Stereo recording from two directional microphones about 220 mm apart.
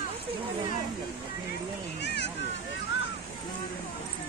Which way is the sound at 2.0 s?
50° left (ahead or behind).